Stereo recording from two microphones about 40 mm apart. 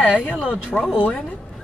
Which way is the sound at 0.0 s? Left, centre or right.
Left.